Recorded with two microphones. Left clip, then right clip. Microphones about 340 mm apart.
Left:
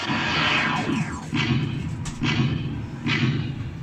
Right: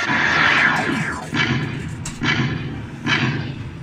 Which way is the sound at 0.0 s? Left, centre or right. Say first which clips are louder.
Right 7 dB; centre.